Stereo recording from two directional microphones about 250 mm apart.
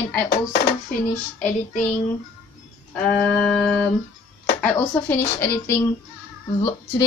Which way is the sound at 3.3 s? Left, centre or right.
Centre.